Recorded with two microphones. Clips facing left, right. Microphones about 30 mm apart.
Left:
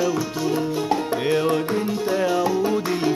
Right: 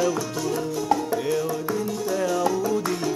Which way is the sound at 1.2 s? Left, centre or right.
Left.